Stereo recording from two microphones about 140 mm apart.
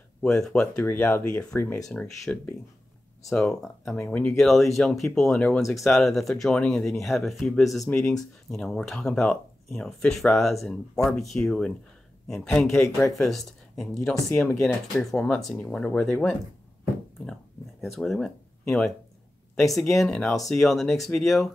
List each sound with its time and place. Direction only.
0.2 s speech: 5° left (ahead or behind)
1.9 s speech: 5° left (ahead or behind)
17.3 s a sound: centre (ahead or behind)
19.5 s speech: centre (ahead or behind)